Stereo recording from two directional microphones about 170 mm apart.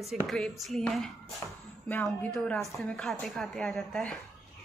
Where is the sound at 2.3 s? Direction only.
Centre (ahead or behind).